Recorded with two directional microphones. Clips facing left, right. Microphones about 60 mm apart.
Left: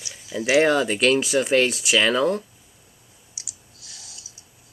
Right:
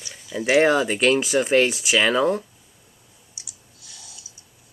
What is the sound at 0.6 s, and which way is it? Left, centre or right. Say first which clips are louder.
Speech: right 1 dB; centre.